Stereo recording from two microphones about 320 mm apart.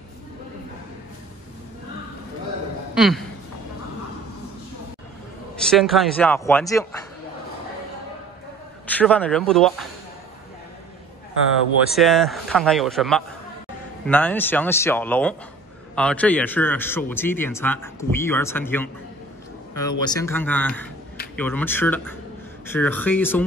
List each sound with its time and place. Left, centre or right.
2.9 s a sound: centre
5.7 s speech: centre
8.8 s speech: centre
11.9 s speech: centre